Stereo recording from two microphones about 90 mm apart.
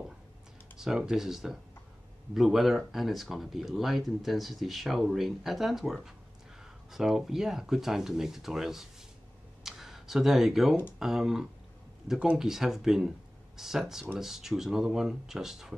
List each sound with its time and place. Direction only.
0.7 s speech: 5° right (ahead or behind)
9.6 s a sound: 5° right (ahead or behind)
11.0 s speech: 5° right (ahead or behind)